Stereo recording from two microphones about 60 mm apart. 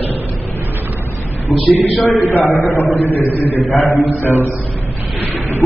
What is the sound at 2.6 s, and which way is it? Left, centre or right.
Speech, left.